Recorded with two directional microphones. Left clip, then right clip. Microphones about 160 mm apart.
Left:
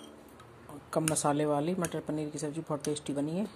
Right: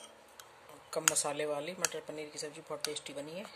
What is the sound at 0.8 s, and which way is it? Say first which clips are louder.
Speech: left 4 dB; 10° left (ahead or behind).